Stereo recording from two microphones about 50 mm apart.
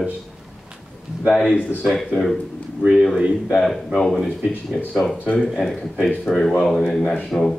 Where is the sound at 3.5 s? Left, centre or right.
Centre.